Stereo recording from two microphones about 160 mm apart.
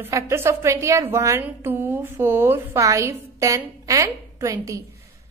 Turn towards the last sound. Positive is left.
turn(degrees=-20)  # may be behind; listen again after turning